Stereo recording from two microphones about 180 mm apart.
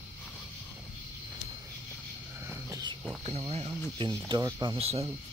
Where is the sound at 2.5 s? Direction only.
20° right (ahead or behind).